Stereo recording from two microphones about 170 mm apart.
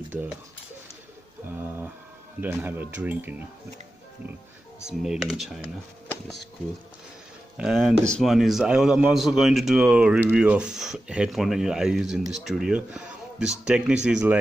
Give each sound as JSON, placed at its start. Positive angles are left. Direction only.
{"t": 1.5, "sound": "a sound", "side_deg": -15}
{"t": 2.4, "sound": "speech", "side_deg": -10}
{"t": 4.8, "sound": "speech", "side_deg": 0}
{"t": 7.5, "sound": "speech", "side_deg": 0}